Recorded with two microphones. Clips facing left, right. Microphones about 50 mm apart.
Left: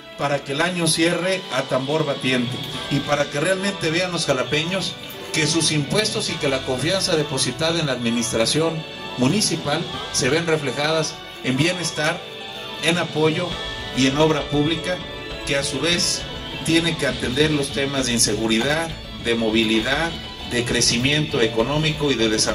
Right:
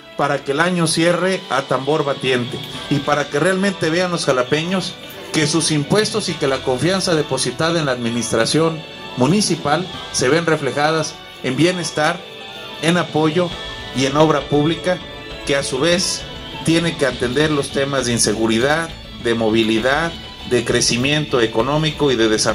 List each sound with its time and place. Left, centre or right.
0.2 s a man's voice: right
3.1 s a man's voice: right
13.1 s speech: right
13.9 s speech: right
15.4 s a man's voice: right
17.5 s speech: right
18.0 s a man's voice: right